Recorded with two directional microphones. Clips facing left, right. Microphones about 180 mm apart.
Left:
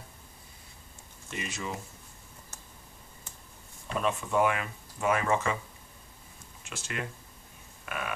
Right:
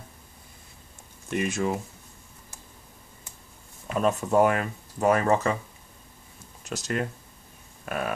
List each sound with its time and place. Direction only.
1.3 s speech: 55° right (ahead or behind)
3.8 s speech: 40° right (ahead or behind)
6.6 s speech: 40° right (ahead or behind)
7.8 s a sound: 40° right (ahead or behind)